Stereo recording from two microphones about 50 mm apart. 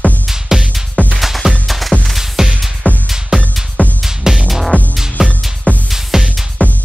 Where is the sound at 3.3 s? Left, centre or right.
Centre.